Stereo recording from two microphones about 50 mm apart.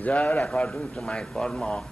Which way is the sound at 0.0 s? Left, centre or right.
Left.